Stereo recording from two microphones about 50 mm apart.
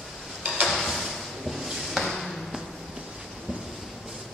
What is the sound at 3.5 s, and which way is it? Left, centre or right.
Thunder, centre.